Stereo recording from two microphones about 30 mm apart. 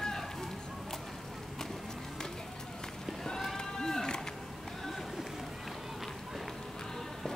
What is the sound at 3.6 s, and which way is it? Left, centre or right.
Run, centre.